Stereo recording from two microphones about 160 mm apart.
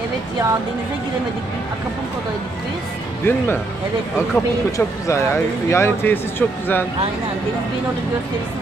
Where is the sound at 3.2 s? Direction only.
15° left (ahead or behind).